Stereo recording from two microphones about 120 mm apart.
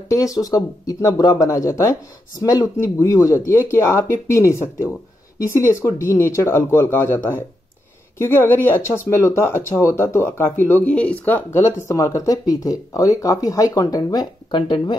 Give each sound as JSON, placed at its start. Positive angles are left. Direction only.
{"t": 0.1, "sound": "speech", "side_deg": 30}